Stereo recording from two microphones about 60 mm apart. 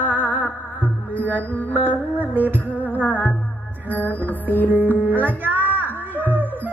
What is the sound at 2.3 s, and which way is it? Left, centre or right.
Music, right.